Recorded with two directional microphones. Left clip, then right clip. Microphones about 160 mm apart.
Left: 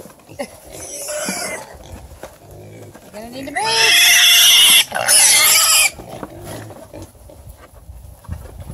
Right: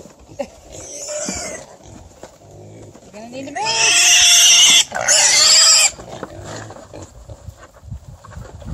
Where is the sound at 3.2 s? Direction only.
30° right (ahead or behind); by 5.9 s 15° right (ahead or behind).